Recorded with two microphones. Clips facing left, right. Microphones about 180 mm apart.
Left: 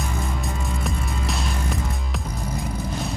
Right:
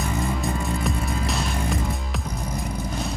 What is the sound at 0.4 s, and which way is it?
Music, centre (ahead or behind).